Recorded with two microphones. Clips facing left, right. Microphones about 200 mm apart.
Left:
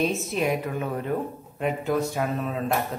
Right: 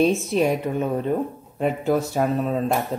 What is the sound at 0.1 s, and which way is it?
Speech, 30° right (ahead or behind).